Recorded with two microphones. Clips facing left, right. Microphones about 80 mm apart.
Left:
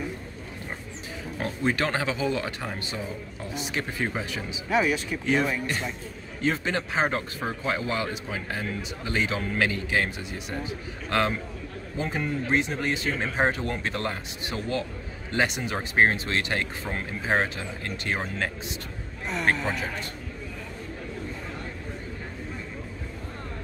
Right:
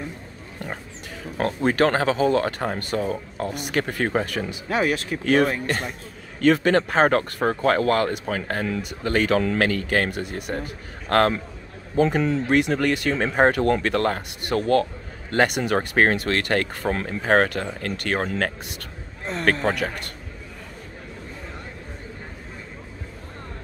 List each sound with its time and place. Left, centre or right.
1.4 s speech: right
9.6 s a man's voice: right
12.0 s a man's voice: right